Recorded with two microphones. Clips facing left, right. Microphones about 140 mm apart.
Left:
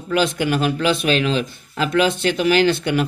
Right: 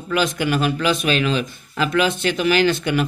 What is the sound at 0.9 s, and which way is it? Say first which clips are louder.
Speech: left 1 dB; 50° right (ahead or behind).